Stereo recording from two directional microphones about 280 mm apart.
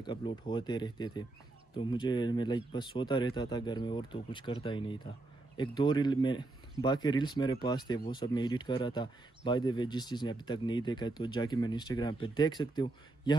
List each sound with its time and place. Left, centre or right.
0.0 s speech: centre